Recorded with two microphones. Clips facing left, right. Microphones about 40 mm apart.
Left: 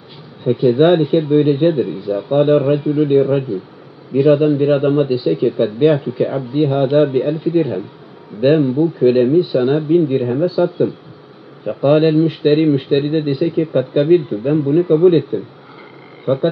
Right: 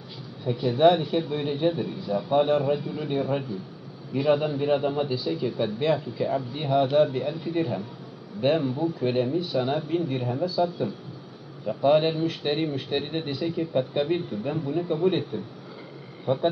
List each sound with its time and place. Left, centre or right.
0.4 s speech: left
8.6 s speech: centre
9.1 s speech: left
10.3 s speech: left
16.3 s speech: left